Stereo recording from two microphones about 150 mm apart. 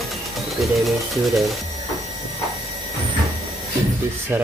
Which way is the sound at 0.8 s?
Centre (ahead or behind).